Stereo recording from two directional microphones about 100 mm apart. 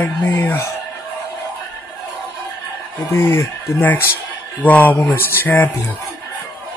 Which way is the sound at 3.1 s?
20° left (ahead or behind).